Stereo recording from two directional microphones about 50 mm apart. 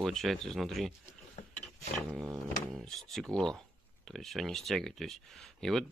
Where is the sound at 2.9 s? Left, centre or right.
Centre.